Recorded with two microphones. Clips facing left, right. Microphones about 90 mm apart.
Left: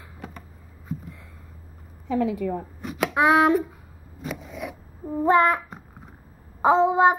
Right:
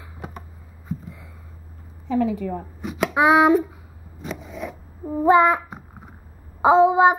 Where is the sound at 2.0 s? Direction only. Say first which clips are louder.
Right 2 dB; 5° left (ahead or behind).